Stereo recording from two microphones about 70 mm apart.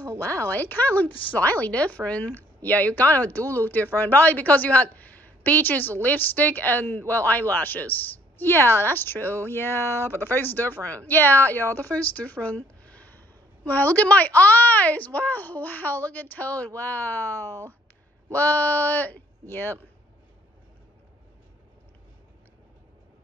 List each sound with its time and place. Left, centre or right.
0.2 s speech: left